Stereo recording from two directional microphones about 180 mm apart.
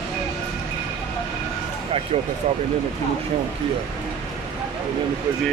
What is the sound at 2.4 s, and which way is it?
Speech, 40° right (ahead or behind).